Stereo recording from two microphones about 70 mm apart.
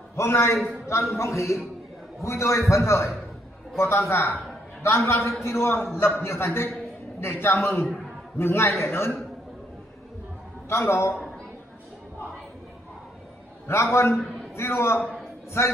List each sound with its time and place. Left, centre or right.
0.1 s a man's voice: left
10.7 s a man's voice: left
13.7 s a man's voice: left
14.1 s a sound: centre
14.5 s a man's voice: left